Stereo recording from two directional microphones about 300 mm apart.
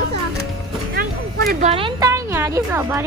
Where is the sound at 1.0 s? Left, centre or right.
Right.